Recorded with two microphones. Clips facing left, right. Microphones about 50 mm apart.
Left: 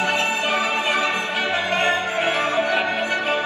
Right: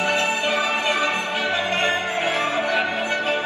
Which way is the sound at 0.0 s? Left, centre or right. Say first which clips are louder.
Even; left.